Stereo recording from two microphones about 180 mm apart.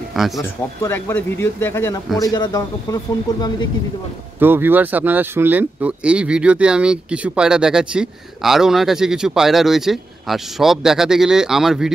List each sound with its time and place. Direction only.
0.4 s a man's voice: 15° left (ahead or behind)
4.4 s speech: 10° right (ahead or behind)